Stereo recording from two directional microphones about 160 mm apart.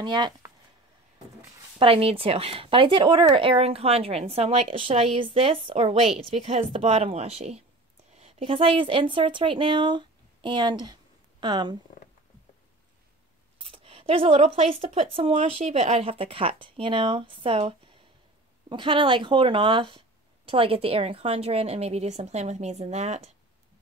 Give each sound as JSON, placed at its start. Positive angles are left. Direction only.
{"t": 0.0, "sound": "speech", "side_deg": -30}
{"t": 1.8, "sound": "a woman's voice", "side_deg": -35}
{"t": 13.6, "sound": "speech", "side_deg": -35}